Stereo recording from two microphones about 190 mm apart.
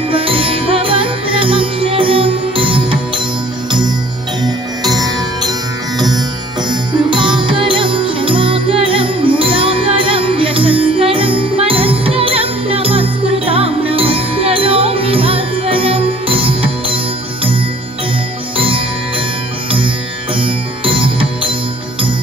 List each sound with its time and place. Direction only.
0.1 s music: 30° right (ahead or behind)
4.9 s music: 20° right (ahead or behind)
18.6 s music: 30° right (ahead or behind)
20.3 s music: 25° right (ahead or behind)